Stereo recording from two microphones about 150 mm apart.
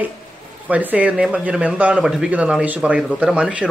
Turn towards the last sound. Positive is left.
turn(degrees=-5)  # may be behind; listen again after turning